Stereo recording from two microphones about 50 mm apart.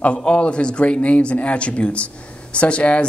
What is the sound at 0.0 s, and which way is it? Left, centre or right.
Speech, left.